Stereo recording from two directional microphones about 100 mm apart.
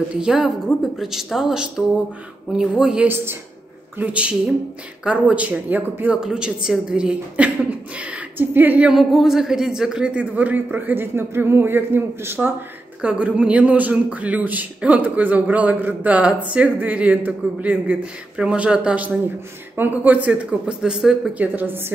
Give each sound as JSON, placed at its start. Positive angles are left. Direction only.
{"t": 0.2, "sound": "speech", "side_deg": -5}
{"t": 6.2, "sound": "speech", "side_deg": -5}
{"t": 8.9, "sound": "speech", "side_deg": 0}
{"t": 13.0, "sound": "speech", "side_deg": -15}
{"t": 21.5, "sound": "a woman's voice", "side_deg": -20}